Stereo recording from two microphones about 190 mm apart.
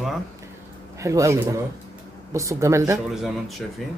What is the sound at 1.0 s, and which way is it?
Speech, 15° right (ahead or behind).